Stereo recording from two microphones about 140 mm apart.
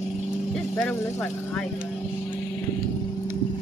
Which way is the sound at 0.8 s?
10° left (ahead or behind).